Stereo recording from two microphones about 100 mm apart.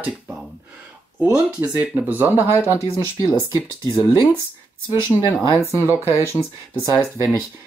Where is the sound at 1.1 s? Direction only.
20° right (ahead or behind).